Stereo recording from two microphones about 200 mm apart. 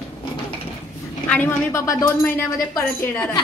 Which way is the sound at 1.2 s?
10° left (ahead or behind).